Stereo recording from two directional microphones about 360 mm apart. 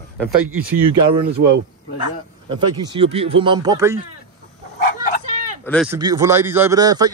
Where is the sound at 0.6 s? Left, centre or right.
Right.